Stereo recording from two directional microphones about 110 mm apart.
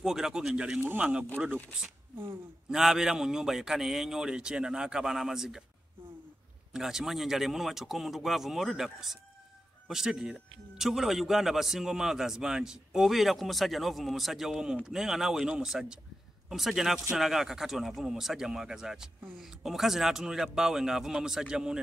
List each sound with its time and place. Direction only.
0.0 s speech: 5° right (ahead or behind)
6.7 s speech: 5° right (ahead or behind)